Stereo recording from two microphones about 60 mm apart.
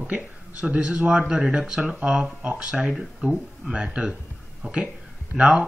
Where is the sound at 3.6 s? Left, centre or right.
Centre.